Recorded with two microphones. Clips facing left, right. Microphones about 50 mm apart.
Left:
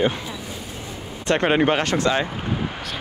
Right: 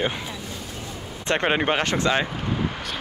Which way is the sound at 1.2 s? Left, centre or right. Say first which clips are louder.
Left 3 dB; right.